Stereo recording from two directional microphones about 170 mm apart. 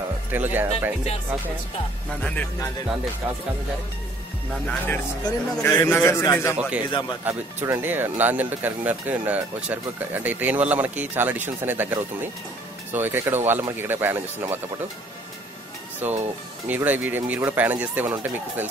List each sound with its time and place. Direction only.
0.3 s speech: 10° right (ahead or behind)
4.6 s a man's voice: 10° left (ahead or behind)
6.9 s speech: 25° left (ahead or behind)
7.2 s speech: 10° right (ahead or behind)
16.0 s speech: 10° right (ahead or behind)